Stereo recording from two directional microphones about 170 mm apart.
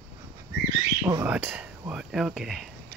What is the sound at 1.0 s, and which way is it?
Speech, 15° right (ahead or behind).